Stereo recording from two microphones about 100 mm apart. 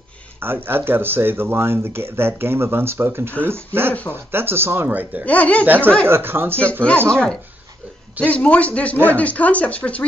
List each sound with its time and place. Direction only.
0.4 s speech: 20° right (ahead or behind)
5.2 s speech: 15° left (ahead or behind)
5.7 s speech: 20° right (ahead or behind)
7.1 s speech: 10° left (ahead or behind)